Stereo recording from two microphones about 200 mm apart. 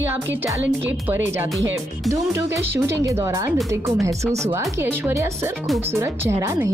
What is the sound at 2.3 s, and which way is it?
Speech, 15° right (ahead or behind).